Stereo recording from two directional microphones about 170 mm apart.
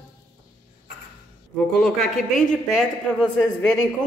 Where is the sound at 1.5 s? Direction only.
Centre (ahead or behind).